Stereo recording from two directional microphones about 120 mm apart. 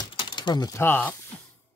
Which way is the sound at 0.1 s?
40° left (ahead or behind).